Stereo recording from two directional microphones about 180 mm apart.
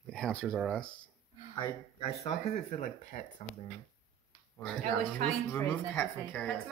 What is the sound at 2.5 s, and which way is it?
Speech, 40° left (ahead or behind).